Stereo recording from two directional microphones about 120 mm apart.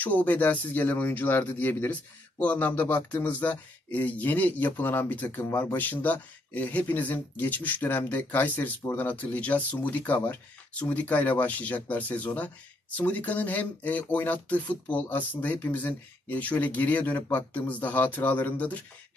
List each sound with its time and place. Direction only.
0.0 s speech: 15° left (ahead or behind)